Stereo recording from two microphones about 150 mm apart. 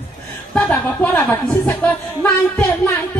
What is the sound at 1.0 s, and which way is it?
A man's voice, 15° left (ahead or behind).